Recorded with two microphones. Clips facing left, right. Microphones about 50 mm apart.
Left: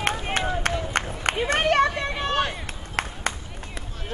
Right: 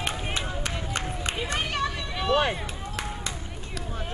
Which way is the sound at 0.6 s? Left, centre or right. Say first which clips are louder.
Left 6 dB; left.